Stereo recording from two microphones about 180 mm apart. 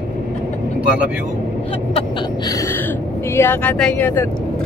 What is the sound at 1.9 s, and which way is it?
Speech, 20° left (ahead or behind).